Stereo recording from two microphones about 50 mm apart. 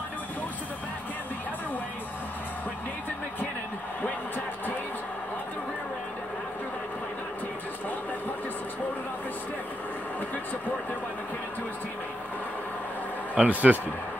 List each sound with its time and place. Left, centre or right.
13.3 s speech: right